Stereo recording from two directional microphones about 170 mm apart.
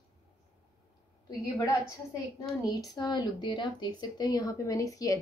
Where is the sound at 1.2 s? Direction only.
20° left (ahead or behind).